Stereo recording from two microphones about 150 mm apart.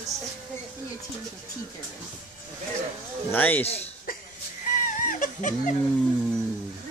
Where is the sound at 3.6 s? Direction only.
45° left (ahead or behind).